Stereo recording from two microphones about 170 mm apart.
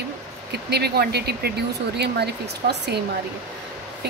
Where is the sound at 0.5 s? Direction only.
75° right (ahead or behind).